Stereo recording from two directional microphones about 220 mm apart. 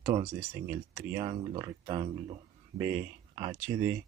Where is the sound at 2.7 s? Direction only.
10° right (ahead or behind).